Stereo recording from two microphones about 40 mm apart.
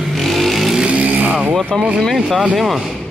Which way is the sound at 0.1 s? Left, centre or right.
Centre.